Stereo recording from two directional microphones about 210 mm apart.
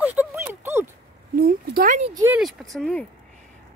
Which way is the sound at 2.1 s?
10° right (ahead or behind).